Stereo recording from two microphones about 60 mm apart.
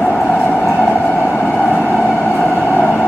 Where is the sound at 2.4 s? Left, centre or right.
Left.